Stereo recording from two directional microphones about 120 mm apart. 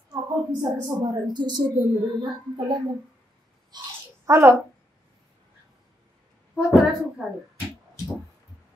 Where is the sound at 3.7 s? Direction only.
35° right (ahead or behind).